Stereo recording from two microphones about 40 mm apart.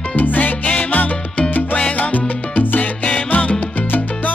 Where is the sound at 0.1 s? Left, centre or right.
Left.